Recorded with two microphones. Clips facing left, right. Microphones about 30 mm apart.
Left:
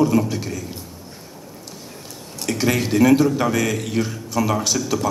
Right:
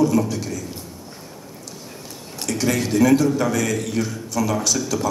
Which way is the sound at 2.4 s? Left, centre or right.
Left.